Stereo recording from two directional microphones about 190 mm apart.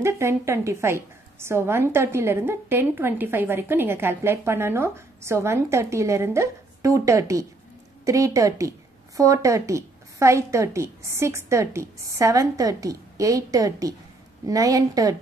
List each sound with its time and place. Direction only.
0.0 s a woman's voice: 15° right (ahead or behind)